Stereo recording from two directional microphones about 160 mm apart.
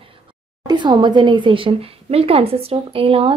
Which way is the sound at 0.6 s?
30° right (ahead or behind).